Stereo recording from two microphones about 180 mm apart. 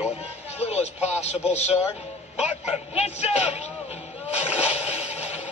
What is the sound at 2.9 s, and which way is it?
Speech, 35° left (ahead or behind).